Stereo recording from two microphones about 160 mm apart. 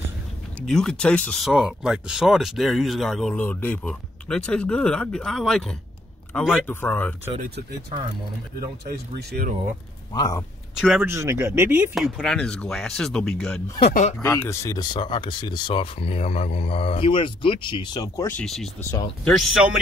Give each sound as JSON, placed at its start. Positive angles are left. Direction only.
{"t": 0.6, "sound": "speech", "side_deg": 5}
{"t": 7.3, "sound": "speech", "side_deg": -80}
{"t": 10.1, "sound": "speech", "side_deg": 25}
{"t": 10.8, "sound": "speech", "side_deg": 0}
{"t": 11.1, "sound": "speech", "side_deg": -20}
{"t": 11.9, "sound": "speech", "side_deg": 0}
{"t": 14.2, "sound": "speech", "side_deg": 15}
{"t": 15.0, "sound": "a man's voice", "side_deg": 30}
{"t": 18.4, "sound": "speech", "side_deg": 0}